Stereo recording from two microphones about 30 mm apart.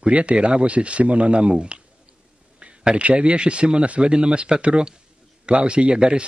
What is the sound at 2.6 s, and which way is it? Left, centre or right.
A man's voice, right.